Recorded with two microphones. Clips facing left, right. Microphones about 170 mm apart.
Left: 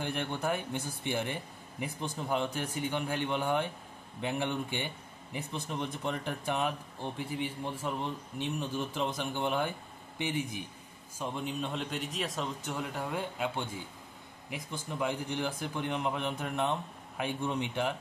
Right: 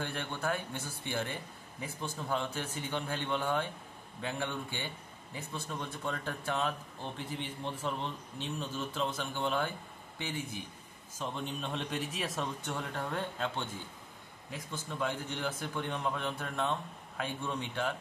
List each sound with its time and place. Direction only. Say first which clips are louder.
0.0 s speech: left 3 dB; 15° left (ahead or behind)